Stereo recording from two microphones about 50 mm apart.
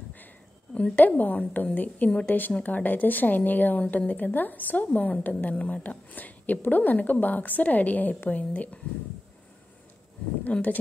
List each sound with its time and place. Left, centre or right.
0.9 s a woman's voice: left
2.0 s speech: left
2.5 s a woman's voice: left
10.4 s a woman's voice: left